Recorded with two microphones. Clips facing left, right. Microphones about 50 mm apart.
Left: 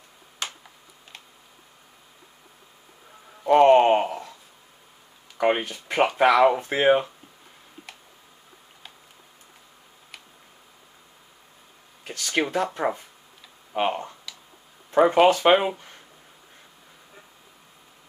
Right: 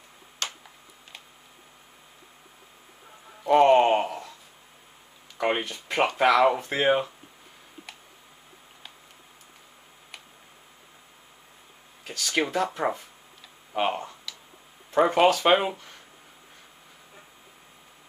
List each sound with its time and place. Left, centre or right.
0.4 s tick-tock: centre
3.4 s a sound: centre
5.4 s speech: centre
12.2 s speech: centre